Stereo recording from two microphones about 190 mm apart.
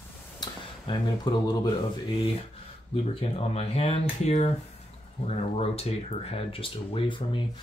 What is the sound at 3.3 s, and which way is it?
Speech, 30° left (ahead or behind).